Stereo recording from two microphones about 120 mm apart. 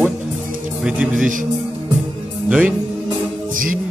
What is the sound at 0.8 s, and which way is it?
Speech, 10° right (ahead or behind).